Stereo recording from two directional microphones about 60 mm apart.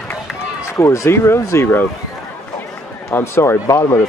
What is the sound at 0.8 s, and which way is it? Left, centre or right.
Speech, left.